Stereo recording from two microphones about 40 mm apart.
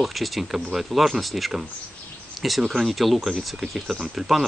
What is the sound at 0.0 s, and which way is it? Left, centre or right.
Speech, centre.